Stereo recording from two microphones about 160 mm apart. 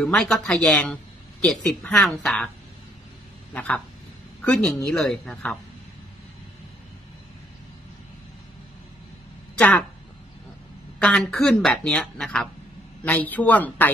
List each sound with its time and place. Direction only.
0.0 s speech: 5° left (ahead or behind)
3.5 s a woman's voice: 10° left (ahead or behind)
9.6 s speech: 10° left (ahead or behind)
11.0 s speech: 5° left (ahead or behind)